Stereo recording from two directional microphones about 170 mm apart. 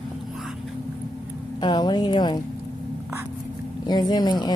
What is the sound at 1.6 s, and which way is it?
Speech, 25° left (ahead or behind).